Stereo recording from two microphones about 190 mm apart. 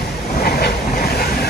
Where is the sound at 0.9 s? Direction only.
55° left (ahead or behind).